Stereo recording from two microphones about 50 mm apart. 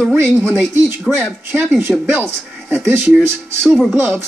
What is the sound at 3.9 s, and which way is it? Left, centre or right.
Speech, right.